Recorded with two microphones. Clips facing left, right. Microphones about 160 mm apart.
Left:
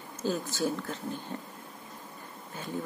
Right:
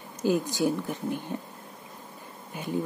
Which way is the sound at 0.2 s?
15° right (ahead or behind).